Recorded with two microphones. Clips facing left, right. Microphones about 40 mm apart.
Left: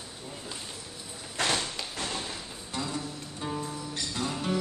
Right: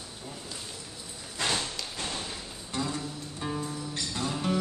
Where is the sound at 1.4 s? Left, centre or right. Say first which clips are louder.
Left 2 dB; left.